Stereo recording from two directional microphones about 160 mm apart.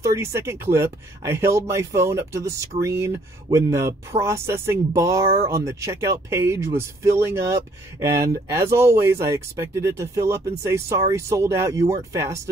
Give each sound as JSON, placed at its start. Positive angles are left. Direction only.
{"t": 0.0, "sound": "speech", "side_deg": -20}